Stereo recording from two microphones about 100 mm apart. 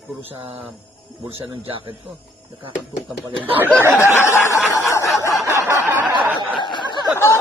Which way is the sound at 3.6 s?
20° right (ahead or behind).